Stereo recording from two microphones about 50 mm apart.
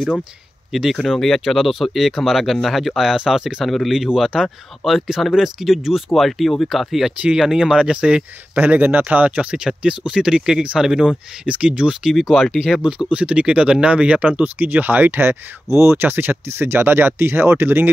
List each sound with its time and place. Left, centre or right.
0.7 s speech: centre
0.9 s speech: centre
3.6 s speech: centre
7.2 s speech: centre
8.5 s speech: right
11.9 s speech: centre
13.1 s speech: right